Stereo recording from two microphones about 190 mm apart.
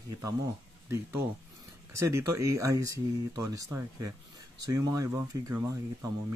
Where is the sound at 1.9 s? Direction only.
15° right (ahead or behind).